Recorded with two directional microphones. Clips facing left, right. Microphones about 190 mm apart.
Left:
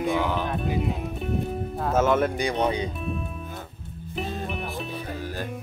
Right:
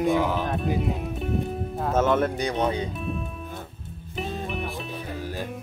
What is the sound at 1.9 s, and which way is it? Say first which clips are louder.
Speech: even; 5° left (ahead or behind).